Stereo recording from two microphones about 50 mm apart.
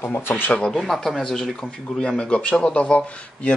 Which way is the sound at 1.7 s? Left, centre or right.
Centre.